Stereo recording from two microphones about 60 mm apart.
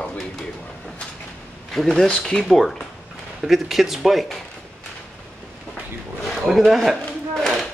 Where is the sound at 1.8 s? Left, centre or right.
Centre.